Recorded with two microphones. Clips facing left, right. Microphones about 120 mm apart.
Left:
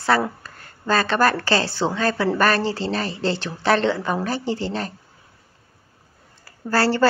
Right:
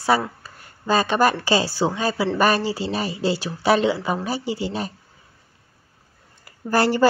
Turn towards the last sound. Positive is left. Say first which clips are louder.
# right 1 dB
turn(degrees=-15)  # may be behind; listen again after turning